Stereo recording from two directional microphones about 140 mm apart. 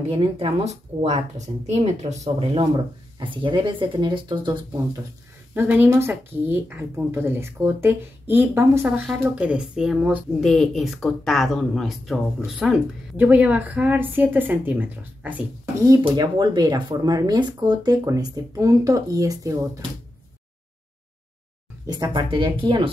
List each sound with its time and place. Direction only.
0.1 s speech: 40° right (ahead or behind)
0.7 s speech: 55° right (ahead or behind); by 5.0 s 30° right (ahead or behind)
5.5 s speech: 15° right (ahead or behind)
16.0 s speech: 30° right (ahead or behind)
21.8 s speech: 30° right (ahead or behind)